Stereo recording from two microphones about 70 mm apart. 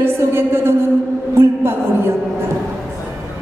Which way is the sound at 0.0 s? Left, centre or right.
Right.